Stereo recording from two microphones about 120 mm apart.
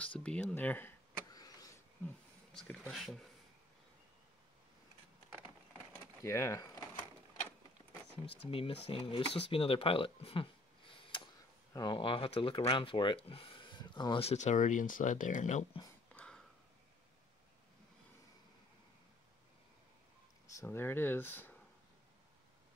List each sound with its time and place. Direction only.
0.2 s speech: 10° left (ahead or behind)
1.3 s vehicle: 30° left (ahead or behind)
2.0 s a sound: 10° left (ahead or behind)
2.9 s speech: centre (ahead or behind)
6.2 s speech: 25° left (ahead or behind)
8.3 s speech: 50° left (ahead or behind)
14.2 s speech: 75° left (ahead or behind); by 15.6 s 90° left
16.1 s a sound: 10° left (ahead or behind)
20.5 s speech: 20° left (ahead or behind)